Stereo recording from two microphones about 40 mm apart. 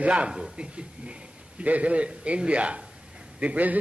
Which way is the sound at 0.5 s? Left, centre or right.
Right.